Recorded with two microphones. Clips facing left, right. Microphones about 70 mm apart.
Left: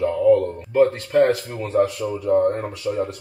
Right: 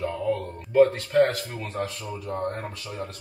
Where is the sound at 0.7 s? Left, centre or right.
Centre.